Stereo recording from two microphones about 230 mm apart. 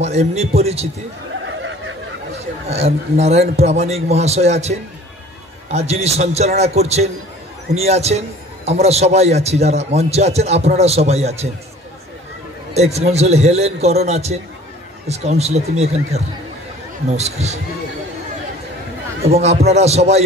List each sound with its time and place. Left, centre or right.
0.0 s a man's voice: right
1.5 s snicker: right
2.7 s a man's voice: right
12.7 s a man's voice: right
19.4 s a man's voice: right